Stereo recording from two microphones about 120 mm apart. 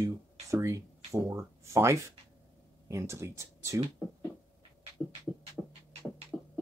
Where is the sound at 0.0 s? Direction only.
25° right (ahead or behind).